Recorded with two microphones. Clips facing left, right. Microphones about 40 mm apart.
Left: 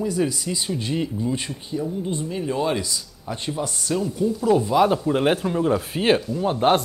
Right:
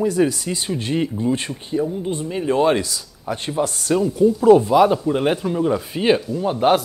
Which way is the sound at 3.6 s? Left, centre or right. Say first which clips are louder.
Right 6 dB; right.